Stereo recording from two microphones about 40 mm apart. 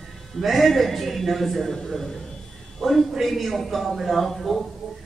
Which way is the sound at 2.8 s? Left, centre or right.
Centre.